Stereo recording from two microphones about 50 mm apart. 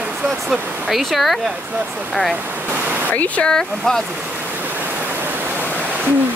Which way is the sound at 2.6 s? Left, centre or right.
Right.